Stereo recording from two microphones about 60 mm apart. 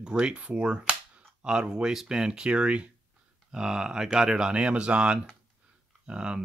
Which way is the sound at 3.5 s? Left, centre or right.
Centre.